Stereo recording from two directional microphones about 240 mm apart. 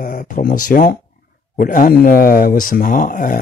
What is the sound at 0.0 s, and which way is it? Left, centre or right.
Speech, left.